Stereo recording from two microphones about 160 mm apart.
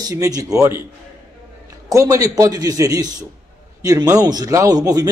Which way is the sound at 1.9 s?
20° right (ahead or behind).